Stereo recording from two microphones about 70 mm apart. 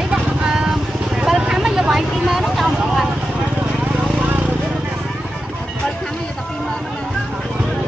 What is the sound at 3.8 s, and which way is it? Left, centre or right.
Vehicle, right.